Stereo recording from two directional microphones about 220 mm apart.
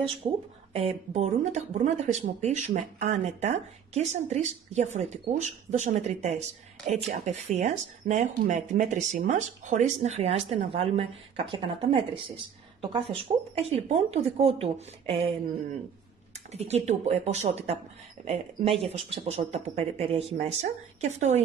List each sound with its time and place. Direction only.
0.2 s speech: 30° right (ahead or behind)
13.6 s speech: 30° right (ahead or behind)
16.5 s speech: 30° right (ahead or behind)